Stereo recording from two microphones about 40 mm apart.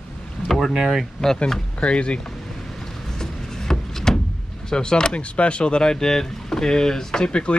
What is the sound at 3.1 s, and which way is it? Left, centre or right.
Music, centre.